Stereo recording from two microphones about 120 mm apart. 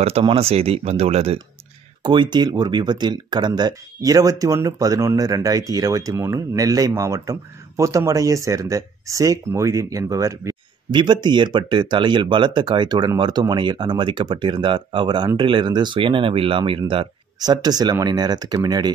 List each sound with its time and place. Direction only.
0.0 s speech: 50° right (ahead or behind)
2.0 s speech: 40° right (ahead or behind)
10.9 s speech: 40° right (ahead or behind)
17.4 s speech: 35° right (ahead or behind)